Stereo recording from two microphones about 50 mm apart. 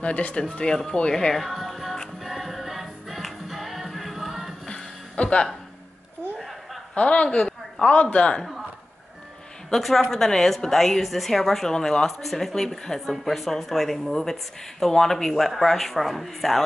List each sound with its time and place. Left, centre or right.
0.0 s speech: left
0.4 s speech: centre
1.3 s speech: centre
2.2 s music: centre
4.6 s music: centre
7.0 s a sound: left
7.9 s speech: left
9.7 s a woman's voice: centre